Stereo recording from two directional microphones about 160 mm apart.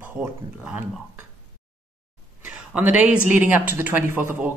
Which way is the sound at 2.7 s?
10° right (ahead or behind).